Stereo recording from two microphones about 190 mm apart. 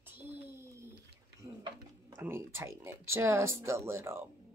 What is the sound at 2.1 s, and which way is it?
Speech, 15° right (ahead or behind).